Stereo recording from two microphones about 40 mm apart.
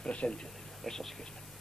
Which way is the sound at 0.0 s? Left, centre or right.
Left.